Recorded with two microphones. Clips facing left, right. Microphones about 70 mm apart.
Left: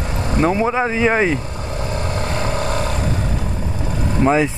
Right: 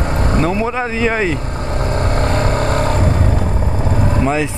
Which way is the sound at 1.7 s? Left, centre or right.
Right.